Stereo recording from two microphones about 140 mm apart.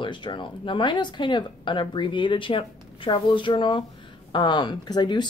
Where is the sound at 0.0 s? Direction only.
35° left (ahead or behind).